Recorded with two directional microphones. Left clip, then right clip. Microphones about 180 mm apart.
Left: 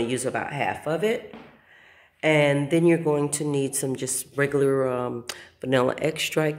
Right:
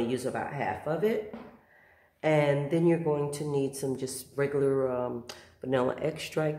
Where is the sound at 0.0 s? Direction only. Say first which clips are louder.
Left 5 dB; 30° left (ahead or behind).